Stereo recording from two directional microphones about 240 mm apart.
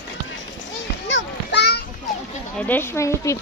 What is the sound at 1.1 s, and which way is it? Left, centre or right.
Children playing, left.